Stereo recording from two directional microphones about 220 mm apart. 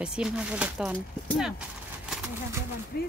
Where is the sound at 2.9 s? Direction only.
45° left (ahead or behind).